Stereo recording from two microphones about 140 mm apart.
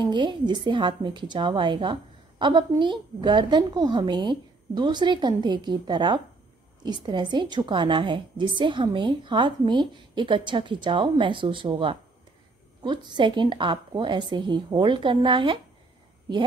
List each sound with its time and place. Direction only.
0.0 s a woman's voice: 35° right (ahead or behind)